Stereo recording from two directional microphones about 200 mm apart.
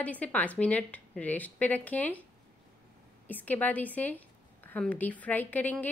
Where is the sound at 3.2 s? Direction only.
10° left (ahead or behind).